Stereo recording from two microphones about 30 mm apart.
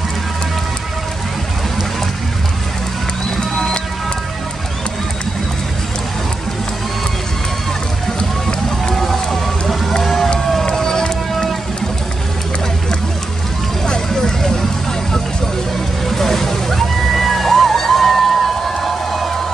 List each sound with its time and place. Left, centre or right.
3.3 s music: centre
8.9 s run: centre
10.0 s crowd: centre
10.6 s run: centre
14.0 s vehicle: centre
16.1 s vehicle: centre